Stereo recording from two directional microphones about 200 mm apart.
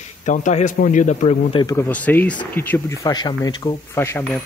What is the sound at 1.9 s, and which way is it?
Speech, 5° left (ahead or behind).